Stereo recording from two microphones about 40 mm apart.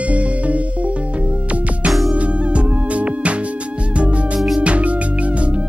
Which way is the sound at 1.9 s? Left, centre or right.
Centre.